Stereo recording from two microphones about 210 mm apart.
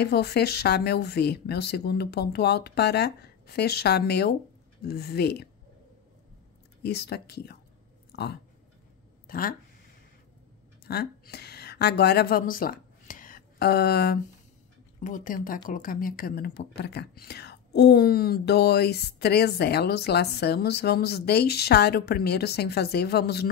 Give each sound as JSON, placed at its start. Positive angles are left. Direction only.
{"t": 0.0, "sound": "speech", "side_deg": 50}
{"t": 6.8, "sound": "speech", "side_deg": 50}
{"t": 8.1, "sound": "a sound", "side_deg": 50}
{"t": 9.3, "sound": "speech", "side_deg": 45}
{"t": 10.9, "sound": "a woman's voice", "side_deg": 50}